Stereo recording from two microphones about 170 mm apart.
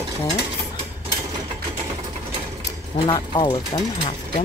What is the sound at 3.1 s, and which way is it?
A woman's voice, 30° left (ahead or behind).